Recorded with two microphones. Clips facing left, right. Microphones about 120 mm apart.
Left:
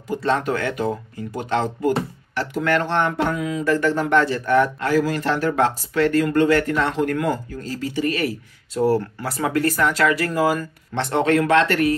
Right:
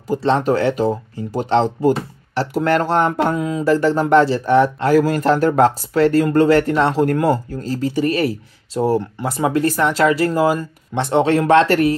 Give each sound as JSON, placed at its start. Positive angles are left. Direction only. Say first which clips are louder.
{"t": 0.2, "sound": "speech", "louder": "right 5 dB", "side_deg": -30}
{"t": 4.8, "sound": "speech", "louder": "right 5 dB", "side_deg": -45}